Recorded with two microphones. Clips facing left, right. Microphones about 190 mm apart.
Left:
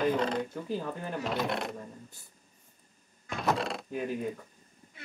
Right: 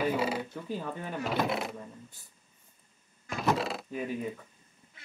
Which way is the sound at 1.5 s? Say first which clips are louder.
Even; centre (ahead or behind).